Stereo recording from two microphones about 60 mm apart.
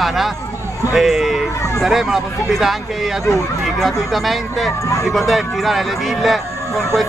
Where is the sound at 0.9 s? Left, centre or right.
Centre.